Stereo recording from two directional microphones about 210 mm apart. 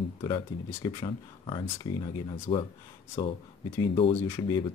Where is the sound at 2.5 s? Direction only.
25° left (ahead or behind).